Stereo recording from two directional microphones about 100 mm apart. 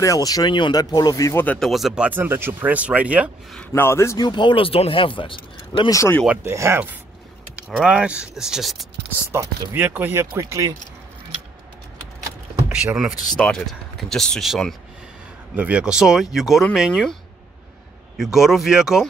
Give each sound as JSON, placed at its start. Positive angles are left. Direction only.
{"t": 0.0, "sound": "speech", "side_deg": 35}
{"t": 1.3, "sound": "speech", "side_deg": 15}
{"t": 1.6, "sound": "speech", "side_deg": 0}
{"t": 2.0, "sound": "speech", "side_deg": -20}
{"t": 3.7, "sound": "a man's voice", "side_deg": 25}
{"t": 4.2, "sound": "speech", "side_deg": 50}
{"t": 5.9, "sound": "speech", "side_deg": 30}
{"t": 6.2, "sound": "speech", "side_deg": -15}
{"t": 6.5, "sound": "speech", "side_deg": -30}
{"t": 7.5, "sound": "speech", "side_deg": -10}
{"t": 9.3, "sound": "speech", "side_deg": -25}
{"t": 12.6, "sound": "speech", "side_deg": -10}
{"t": 13.4, "sound": "speech", "side_deg": 5}
{"t": 15.5, "sound": "speech", "side_deg": -15}